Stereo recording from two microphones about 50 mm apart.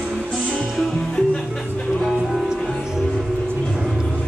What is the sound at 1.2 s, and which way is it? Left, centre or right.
Music, centre.